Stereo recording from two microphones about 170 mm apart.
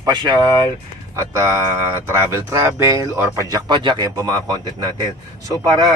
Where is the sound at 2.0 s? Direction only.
15° right (ahead or behind).